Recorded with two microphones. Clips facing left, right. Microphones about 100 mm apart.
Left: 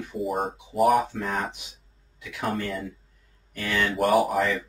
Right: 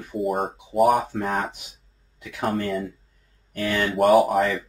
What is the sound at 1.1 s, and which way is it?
Speech, 55° right (ahead or behind).